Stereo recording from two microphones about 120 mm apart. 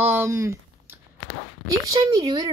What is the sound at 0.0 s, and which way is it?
Speech, 20° right (ahead or behind).